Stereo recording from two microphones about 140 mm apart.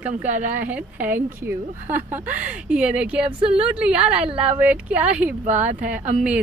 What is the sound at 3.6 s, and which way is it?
Speech, 5° right (ahead or behind).